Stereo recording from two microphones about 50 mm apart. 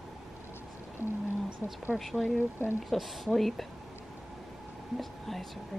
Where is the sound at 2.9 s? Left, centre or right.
Centre.